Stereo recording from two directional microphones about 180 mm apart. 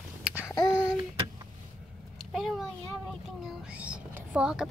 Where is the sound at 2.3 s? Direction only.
Centre (ahead or behind).